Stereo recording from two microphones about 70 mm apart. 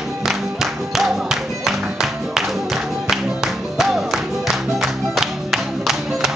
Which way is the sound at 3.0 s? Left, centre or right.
Centre.